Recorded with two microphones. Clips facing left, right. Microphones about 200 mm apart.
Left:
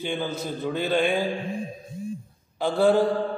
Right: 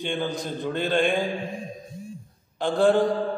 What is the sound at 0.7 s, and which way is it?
Speech, 5° left (ahead or behind).